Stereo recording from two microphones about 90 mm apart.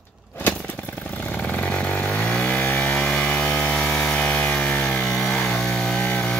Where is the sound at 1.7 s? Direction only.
10° left (ahead or behind).